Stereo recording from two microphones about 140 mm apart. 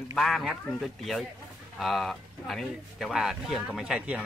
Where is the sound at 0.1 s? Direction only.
Centre (ahead or behind).